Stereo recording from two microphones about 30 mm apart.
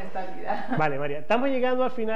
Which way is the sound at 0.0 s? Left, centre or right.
Centre.